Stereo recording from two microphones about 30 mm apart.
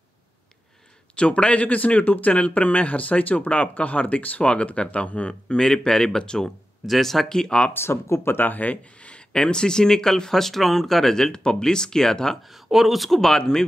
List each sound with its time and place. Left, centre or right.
1.1 s speech: left
4.5 s speech: left
5.6 s speech: centre
6.9 s speech: centre
7.2 s speech: left
8.4 s speech: left
9.3 s speech: left
11.3 s speech: left
12.4 s speech: centre
13.4 s speech: left